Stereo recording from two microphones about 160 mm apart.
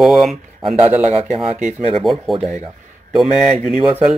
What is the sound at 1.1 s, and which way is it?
Speech, 40° right (ahead or behind).